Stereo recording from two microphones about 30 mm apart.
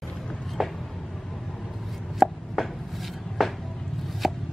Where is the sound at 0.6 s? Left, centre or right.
Centre.